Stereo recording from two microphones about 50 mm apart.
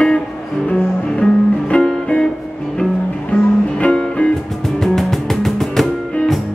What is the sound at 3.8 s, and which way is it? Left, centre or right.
Music, left.